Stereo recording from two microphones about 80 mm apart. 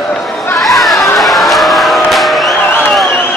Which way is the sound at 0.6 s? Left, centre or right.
Centre.